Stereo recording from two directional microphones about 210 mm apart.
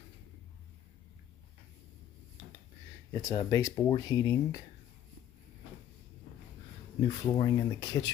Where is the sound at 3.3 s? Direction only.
20° left (ahead or behind).